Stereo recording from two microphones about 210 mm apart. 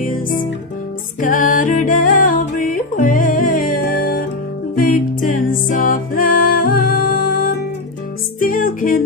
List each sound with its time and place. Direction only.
1.2 s music: 40° left (ahead or behind)